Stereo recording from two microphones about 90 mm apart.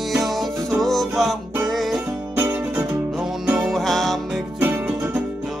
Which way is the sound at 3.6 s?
Centre (ahead or behind).